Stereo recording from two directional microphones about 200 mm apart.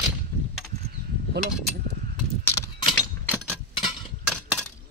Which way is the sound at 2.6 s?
10° left (ahead or behind).